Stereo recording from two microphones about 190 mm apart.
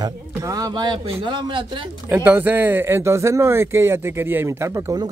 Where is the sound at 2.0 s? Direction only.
10° right (ahead or behind).